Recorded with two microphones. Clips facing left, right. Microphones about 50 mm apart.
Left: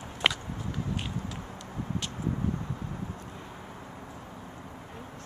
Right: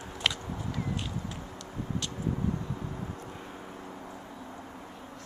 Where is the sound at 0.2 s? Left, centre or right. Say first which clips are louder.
Left 3 dB; centre.